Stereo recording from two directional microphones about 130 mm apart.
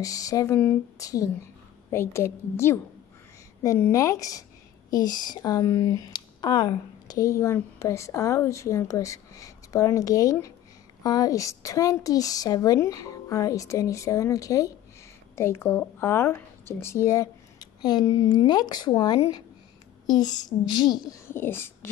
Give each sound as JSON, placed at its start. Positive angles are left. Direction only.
{"t": 0.0, "sound": "speech", "side_deg": 25}
{"t": 21.3, "sound": "speech", "side_deg": 15}